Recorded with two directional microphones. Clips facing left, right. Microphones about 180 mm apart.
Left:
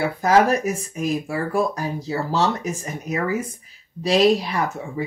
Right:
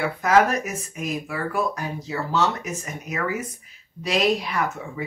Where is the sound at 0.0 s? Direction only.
35° left (ahead or behind).